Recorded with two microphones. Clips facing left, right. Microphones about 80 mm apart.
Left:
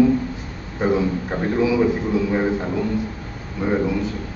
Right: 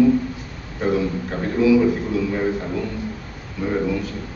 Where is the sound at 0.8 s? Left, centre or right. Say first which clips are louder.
Left 1 dB; left.